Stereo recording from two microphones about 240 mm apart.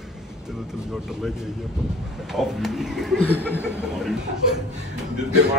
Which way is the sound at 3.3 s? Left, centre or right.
Centre.